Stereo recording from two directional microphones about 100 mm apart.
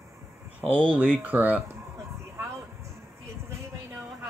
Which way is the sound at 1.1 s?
15° right (ahead or behind).